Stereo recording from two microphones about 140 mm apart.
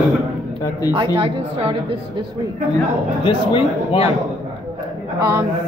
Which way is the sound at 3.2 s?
40° left (ahead or behind).